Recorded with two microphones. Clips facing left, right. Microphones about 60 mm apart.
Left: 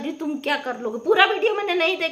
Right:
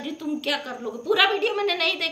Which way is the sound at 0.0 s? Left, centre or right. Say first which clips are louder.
Left 2 dB; left.